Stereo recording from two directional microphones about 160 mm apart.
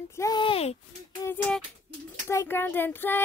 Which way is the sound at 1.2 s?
25° left (ahead or behind).